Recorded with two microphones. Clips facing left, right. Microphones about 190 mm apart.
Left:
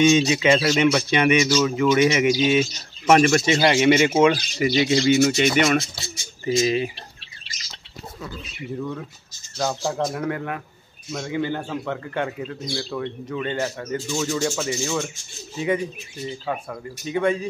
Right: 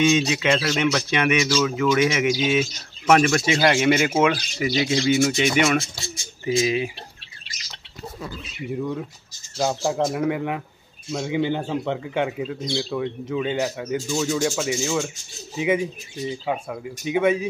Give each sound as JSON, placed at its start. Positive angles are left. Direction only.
{"t": 0.0, "sound": "speech", "side_deg": 0}
{"t": 8.7, "sound": "speech", "side_deg": -15}
{"t": 10.0, "sound": "speech", "side_deg": -5}